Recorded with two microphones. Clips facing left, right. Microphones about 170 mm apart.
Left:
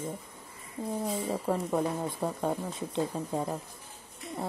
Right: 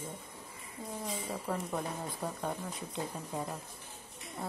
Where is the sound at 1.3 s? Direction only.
30° left (ahead or behind).